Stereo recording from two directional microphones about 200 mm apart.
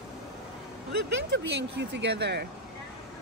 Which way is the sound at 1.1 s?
60° right (ahead or behind).